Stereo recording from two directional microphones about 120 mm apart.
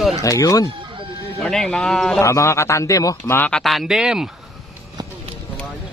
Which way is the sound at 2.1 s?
25° left (ahead or behind).